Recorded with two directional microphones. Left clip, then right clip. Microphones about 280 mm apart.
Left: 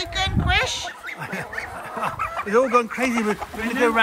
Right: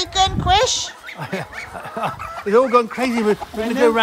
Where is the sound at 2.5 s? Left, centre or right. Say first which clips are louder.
Right 5 dB; right.